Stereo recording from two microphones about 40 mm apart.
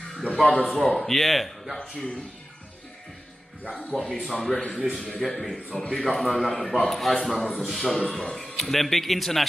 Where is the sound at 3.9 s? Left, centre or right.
Centre.